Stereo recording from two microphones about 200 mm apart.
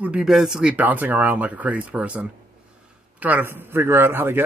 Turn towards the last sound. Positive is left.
turn(degrees=-10)  # may be behind; listen again after turning